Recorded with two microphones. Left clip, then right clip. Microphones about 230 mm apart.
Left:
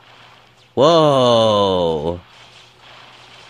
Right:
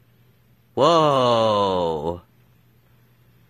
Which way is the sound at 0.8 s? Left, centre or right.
Centre.